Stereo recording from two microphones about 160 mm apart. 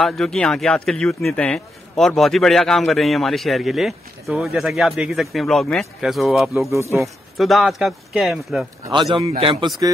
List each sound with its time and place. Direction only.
0.0 s a man's voice: centre (ahead or behind)
6.7 s a man's voice: 15° right (ahead or behind)
7.0 s a man's voice: centre (ahead or behind)
8.9 s a man's voice: 30° right (ahead or behind)